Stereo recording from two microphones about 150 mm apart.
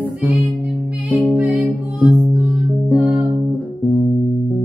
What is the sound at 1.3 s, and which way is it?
Music, 10° right (ahead or behind).